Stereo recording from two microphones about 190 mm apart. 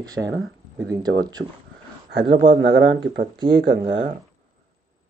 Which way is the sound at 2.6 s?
75° right (ahead or behind).